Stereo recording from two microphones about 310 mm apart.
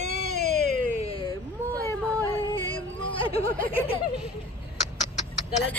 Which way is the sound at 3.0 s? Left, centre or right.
Centre.